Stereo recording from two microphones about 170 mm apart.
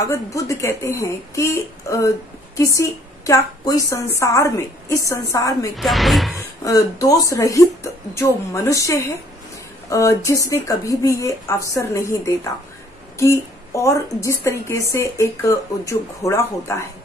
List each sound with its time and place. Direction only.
0.0 s speech: 20° left (ahead or behind)
5.8 s speech: centre (ahead or behind)
6.6 s speech: 20° left (ahead or behind)